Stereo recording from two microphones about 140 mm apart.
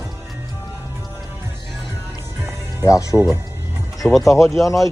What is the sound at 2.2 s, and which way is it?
Music, 20° right (ahead or behind).